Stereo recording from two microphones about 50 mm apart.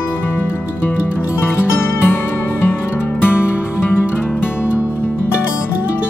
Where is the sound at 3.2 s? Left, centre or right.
Left.